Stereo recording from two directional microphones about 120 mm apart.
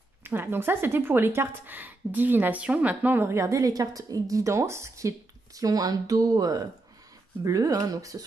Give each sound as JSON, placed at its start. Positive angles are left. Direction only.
{"t": 0.2, "sound": "a woman's voice", "side_deg": -20}